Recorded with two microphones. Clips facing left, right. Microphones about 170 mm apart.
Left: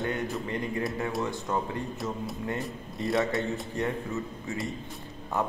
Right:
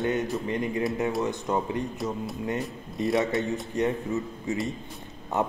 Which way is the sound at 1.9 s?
Centre (ahead or behind).